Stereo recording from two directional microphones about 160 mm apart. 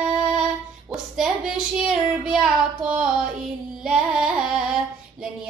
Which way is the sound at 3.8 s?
5° right (ahead or behind).